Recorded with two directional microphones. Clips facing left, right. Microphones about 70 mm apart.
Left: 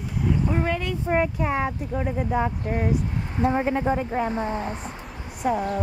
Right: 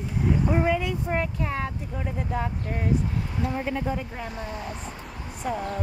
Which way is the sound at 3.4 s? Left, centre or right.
Left.